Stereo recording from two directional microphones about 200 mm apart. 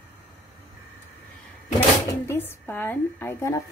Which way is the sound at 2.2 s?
10° left (ahead or behind).